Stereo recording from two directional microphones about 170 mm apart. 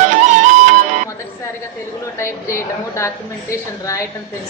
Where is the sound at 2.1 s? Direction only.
15° left (ahead or behind).